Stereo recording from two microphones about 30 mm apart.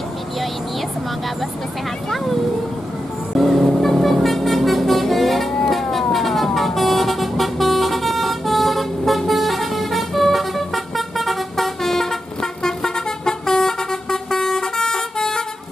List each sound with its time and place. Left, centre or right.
3.3 s vehicle: centre; by 15.4 s left